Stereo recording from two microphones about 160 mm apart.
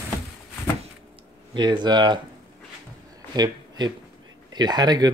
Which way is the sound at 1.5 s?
30° right (ahead or behind).